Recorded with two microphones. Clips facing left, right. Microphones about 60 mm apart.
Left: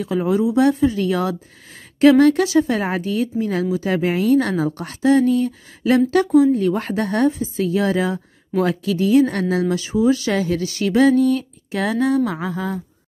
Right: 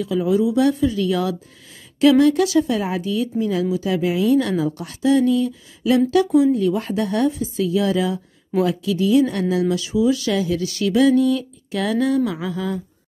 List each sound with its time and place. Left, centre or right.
0.0 s speech: left
2.8 s speech: left